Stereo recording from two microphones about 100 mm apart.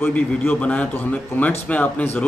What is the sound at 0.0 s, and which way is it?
A man's voice, 15° left (ahead or behind).